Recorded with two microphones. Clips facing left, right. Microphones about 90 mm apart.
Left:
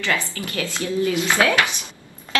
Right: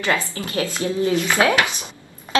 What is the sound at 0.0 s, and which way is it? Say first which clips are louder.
A woman's voice: right 2 dB; 25° right (ahead or behind).